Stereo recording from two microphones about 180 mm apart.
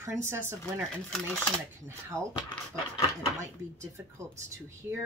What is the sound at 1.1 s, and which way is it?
Speech, 5° left (ahead or behind).